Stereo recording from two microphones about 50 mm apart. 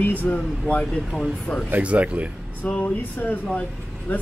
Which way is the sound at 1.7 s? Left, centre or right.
Right.